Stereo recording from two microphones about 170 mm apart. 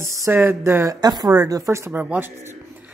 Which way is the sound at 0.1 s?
15° right (ahead or behind).